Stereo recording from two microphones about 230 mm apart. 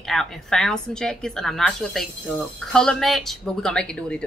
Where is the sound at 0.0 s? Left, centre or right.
Centre.